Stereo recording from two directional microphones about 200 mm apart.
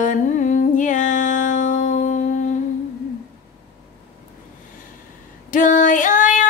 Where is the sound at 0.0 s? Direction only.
40° left (ahead or behind).